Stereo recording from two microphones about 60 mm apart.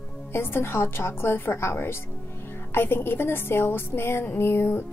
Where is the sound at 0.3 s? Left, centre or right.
Left.